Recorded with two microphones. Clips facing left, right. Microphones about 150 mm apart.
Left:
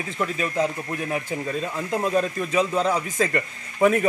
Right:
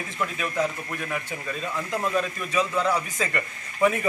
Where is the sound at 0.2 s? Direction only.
30° left (ahead or behind).